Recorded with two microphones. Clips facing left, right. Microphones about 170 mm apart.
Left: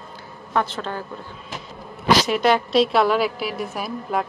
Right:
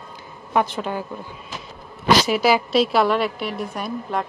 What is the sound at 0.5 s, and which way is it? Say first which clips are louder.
Speech: right 2 dB; 15° right (ahead or behind).